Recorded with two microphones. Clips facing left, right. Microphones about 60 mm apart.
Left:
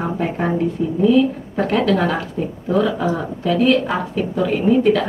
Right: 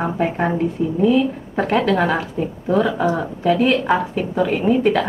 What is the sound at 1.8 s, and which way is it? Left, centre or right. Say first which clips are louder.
A woman's voice: even; right.